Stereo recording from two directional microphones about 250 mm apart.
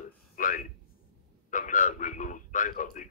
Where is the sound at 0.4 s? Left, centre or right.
Left.